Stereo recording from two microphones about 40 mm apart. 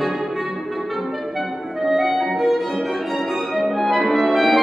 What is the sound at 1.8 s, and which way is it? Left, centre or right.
Music, centre.